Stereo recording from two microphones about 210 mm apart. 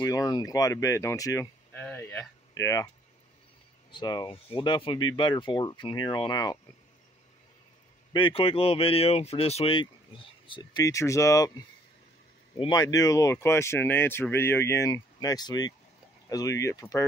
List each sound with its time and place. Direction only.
0.0 s speech: 15° left (ahead or behind)
3.9 s speech: 20° left (ahead or behind)
8.1 s speech: 25° left (ahead or behind)